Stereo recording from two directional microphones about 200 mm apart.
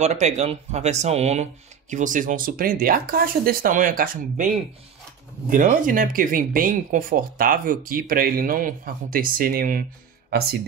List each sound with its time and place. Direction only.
0.0 s speech: 35° right (ahead or behind)
5.5 s speech: 40° right (ahead or behind)